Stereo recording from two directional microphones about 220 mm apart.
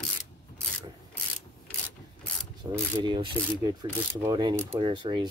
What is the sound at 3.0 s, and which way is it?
Speech, 20° right (ahead or behind).